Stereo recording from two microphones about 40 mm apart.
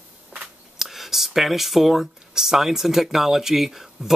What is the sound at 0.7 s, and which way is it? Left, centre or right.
Speech, centre.